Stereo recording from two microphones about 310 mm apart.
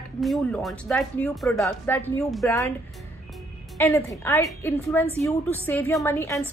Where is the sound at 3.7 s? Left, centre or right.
Centre.